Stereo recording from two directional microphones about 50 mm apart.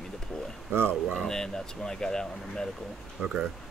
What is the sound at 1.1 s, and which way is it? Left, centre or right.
Speech, centre.